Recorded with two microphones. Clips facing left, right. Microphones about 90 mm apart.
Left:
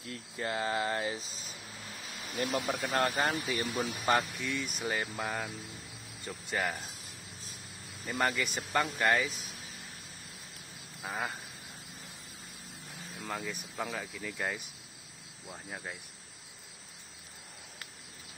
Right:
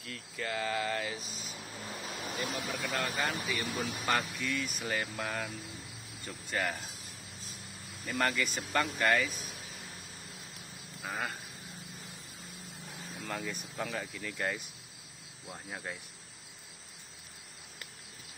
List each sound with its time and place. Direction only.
0.0 s speech: 30° left (ahead or behind)
2.3 s speech: 50° left (ahead or behind)
4.0 s speech: 20° left (ahead or behind)
8.1 s speech: 15° left (ahead or behind)
11.1 s cricket: 5° left (ahead or behind)
13.2 s speech: 5° left (ahead or behind)
15.4 s cricket: centre (ahead or behind)